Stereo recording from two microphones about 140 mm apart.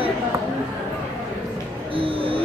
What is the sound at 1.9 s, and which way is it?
Music, 40° right (ahead or behind).